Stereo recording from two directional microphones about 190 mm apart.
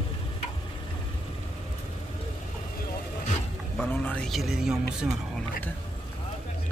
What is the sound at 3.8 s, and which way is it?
Speech, 10° left (ahead or behind).